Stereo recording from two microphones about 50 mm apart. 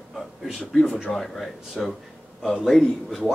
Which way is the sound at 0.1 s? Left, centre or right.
Centre.